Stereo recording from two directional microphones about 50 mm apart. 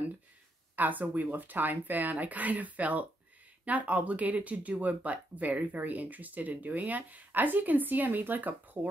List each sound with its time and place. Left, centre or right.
0.7 s speech: right